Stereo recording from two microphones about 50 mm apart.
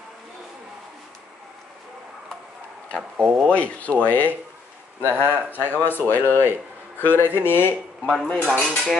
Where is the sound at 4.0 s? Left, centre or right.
Left.